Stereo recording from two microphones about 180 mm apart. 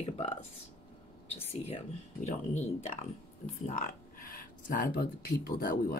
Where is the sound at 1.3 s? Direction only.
35° left (ahead or behind).